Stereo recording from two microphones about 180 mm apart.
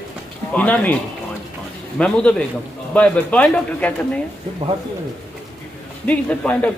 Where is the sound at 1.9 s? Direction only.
5° left (ahead or behind).